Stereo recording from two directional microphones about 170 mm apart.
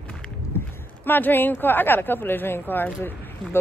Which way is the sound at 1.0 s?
10° left (ahead or behind).